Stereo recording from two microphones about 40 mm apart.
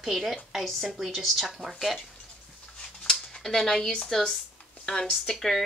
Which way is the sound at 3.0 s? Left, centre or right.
Centre.